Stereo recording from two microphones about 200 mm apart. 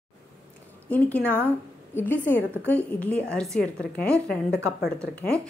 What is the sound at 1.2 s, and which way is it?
Speech, 10° right (ahead or behind).